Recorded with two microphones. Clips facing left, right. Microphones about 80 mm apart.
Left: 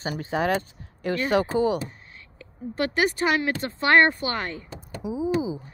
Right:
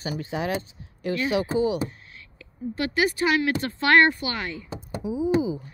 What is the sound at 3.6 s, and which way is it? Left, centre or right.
Speech, left.